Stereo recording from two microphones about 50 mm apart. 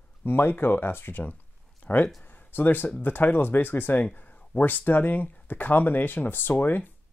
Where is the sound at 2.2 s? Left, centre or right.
Left.